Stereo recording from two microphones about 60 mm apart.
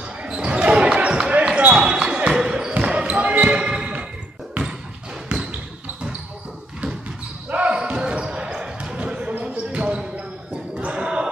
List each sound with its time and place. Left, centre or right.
0.2 s basketball bounce: centre
5.3 s basketball bounce: right
7.4 s basketball bounce: right